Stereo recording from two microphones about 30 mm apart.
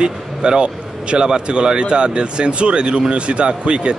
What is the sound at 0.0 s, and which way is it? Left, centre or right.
A man's voice, right.